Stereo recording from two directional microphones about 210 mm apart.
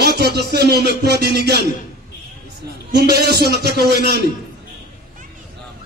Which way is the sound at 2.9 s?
50° right (ahead or behind).